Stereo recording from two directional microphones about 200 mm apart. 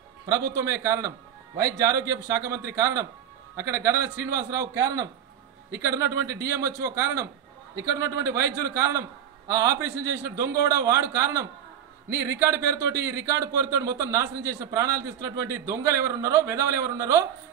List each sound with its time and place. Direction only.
0.3 s speech: 15° right (ahead or behind)